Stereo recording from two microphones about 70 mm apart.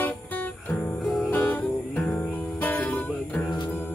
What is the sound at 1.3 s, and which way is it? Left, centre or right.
Music, left.